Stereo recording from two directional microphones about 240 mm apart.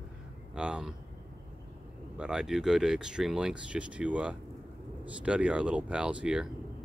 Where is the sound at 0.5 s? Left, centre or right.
Centre.